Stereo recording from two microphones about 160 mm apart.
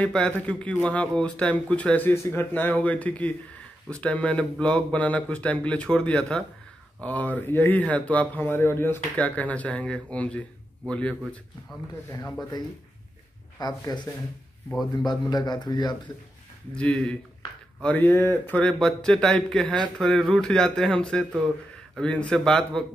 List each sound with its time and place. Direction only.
0.0 s a man's voice: 5° left (ahead or behind)
13.6 s speech: 25° left (ahead or behind)
16.7 s a man's voice: 5° left (ahead or behind)